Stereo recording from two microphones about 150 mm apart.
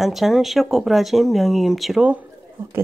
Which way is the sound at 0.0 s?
Centre (ahead or behind).